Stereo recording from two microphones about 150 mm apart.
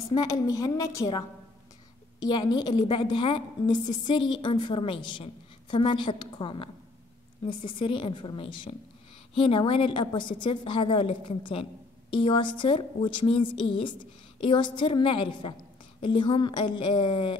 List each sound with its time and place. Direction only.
0.1 s a woman's voice: 25° left (ahead or behind)